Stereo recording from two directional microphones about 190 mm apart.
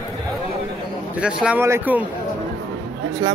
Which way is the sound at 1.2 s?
5° right (ahead or behind).